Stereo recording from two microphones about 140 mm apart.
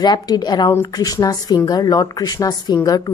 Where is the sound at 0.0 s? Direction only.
30° left (ahead or behind).